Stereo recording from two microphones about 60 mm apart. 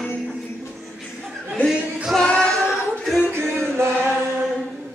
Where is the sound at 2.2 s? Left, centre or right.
Centre.